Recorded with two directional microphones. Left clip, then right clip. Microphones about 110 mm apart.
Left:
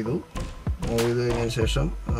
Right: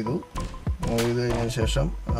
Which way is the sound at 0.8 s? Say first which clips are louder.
Left 1 dB; centre (ahead or behind).